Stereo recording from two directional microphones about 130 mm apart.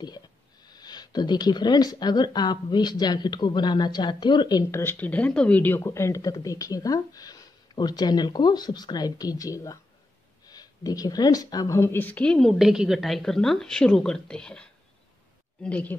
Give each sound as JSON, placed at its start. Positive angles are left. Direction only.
{"t": 0.7, "sound": "speech", "side_deg": 30}